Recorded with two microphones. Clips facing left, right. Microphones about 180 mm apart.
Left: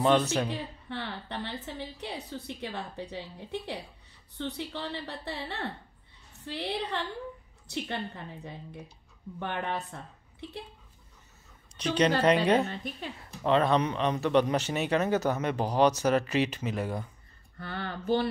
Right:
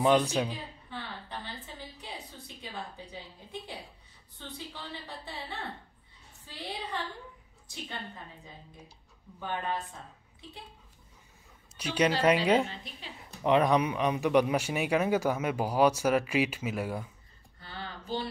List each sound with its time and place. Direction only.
0.0 s speech: 10° right (ahead or behind)
0.5 s a woman's voice: 65° left (ahead or behind)
9.4 s a woman's voice: 70° left (ahead or behind)
11.7 s speech: 10° right (ahead or behind)
12.6 s a woman's voice: 50° left (ahead or behind)
13.2 s speech: 15° right (ahead or behind)
17.6 s a sound: 55° left (ahead or behind)